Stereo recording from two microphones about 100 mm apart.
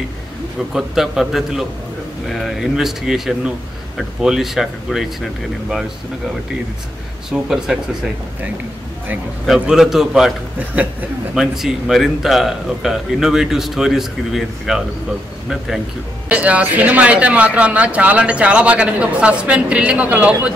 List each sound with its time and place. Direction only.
0.7 s a man's voice: 5° right (ahead or behind)
7.2 s a man's voice: 5° right (ahead or behind)
9.5 s a man's voice: 5° right (ahead or behind)
10.7 s speech: 15° right (ahead or behind)
11.3 s a man's voice: 5° right (ahead or behind)
16.3 s speech: 15° right (ahead or behind)